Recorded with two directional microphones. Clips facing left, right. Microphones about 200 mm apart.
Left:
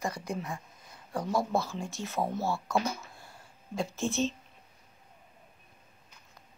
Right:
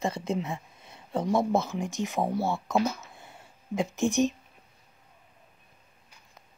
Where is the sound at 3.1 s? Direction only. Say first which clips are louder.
Right 2 dB; 20° right (ahead or behind).